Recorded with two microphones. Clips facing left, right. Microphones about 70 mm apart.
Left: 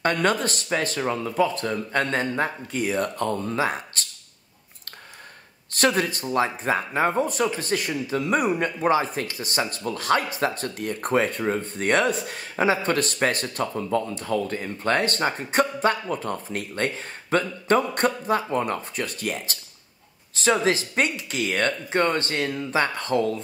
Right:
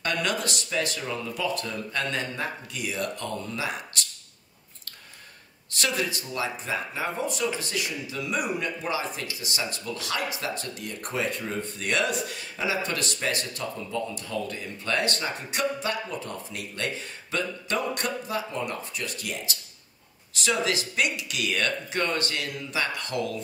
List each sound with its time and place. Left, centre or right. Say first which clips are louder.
0.0 s speech: left 6 dB; left
5.7 s speech: left 7 dB; left